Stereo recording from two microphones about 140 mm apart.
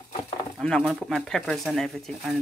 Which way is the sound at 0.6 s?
5° left (ahead or behind).